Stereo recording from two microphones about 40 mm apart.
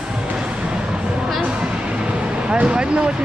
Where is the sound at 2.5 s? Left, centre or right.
Right.